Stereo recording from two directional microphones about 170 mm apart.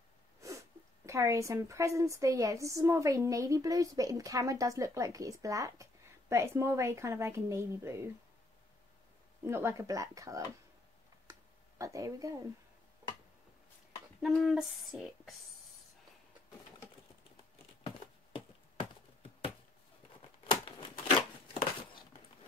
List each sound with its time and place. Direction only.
1.0 s a woman's voice: 15° right (ahead or behind)
9.4 s a woman's voice: 15° right (ahead or behind)
11.8 s a woman's voice: 20° right (ahead or behind)
14.2 s speech: centre (ahead or behind)
17.8 s a sound: 30° left (ahead or behind)
20.4 s a sound: 30° left (ahead or behind)